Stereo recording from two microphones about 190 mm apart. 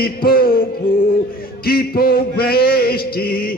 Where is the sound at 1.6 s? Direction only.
55° left (ahead or behind).